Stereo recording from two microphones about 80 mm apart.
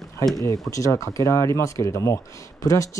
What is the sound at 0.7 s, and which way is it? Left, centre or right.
Speech, left.